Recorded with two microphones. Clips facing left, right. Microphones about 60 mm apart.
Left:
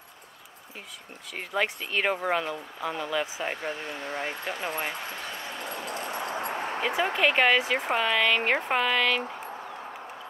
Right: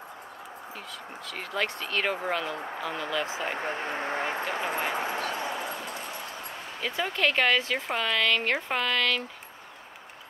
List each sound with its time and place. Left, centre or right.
1.3 s speech: centre
3.5 s speech: right
5.3 s dog: centre
5.7 s a sound: centre
5.9 s a sound: left
7.2 s speech: centre